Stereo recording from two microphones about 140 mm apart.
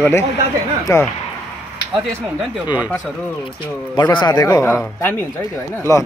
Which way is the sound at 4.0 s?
30° left (ahead or behind).